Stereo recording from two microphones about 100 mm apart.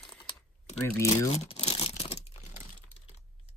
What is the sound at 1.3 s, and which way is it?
Crumpling, 85° left.